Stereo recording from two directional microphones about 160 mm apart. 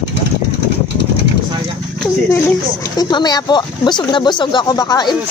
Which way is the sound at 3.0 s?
25° left (ahead or behind).